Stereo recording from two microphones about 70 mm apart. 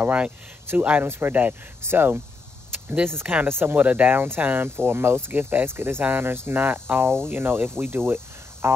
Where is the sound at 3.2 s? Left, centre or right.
Right.